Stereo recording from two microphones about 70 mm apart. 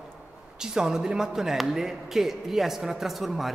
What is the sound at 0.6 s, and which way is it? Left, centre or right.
Speech, centre.